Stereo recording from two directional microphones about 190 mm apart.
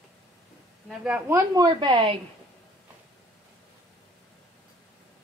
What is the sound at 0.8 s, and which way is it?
Speech, 5° right (ahead or behind).